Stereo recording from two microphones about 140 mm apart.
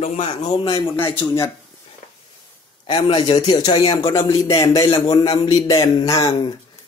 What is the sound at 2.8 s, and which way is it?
A man's voice, 35° left (ahead or behind).